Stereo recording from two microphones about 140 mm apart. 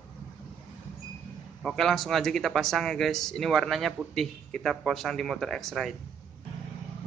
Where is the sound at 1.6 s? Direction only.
Centre (ahead or behind).